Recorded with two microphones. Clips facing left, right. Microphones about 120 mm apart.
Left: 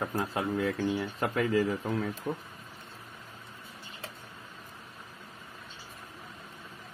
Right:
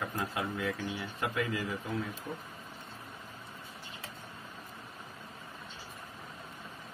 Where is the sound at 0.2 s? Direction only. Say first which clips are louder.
Left 5 dB; 35° left (ahead or behind).